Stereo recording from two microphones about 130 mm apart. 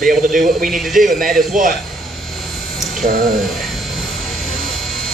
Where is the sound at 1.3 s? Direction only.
90° right.